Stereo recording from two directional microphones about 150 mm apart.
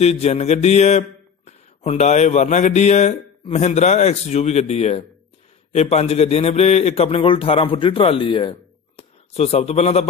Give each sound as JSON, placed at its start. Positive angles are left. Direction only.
{"t": 0.0, "sound": "a man's voice", "side_deg": 45}